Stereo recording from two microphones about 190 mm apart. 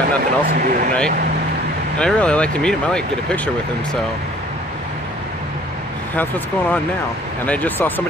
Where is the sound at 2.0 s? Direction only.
5° left (ahead or behind).